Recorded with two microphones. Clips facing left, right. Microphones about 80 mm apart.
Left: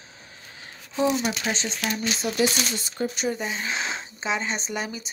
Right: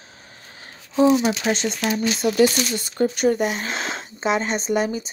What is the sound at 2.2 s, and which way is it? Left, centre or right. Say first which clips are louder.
Speech: right 7 dB; right.